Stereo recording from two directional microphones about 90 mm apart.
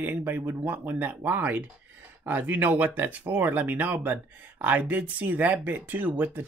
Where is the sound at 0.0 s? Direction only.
20° right (ahead or behind).